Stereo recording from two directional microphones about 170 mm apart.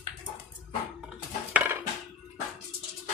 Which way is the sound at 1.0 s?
10° right (ahead or behind).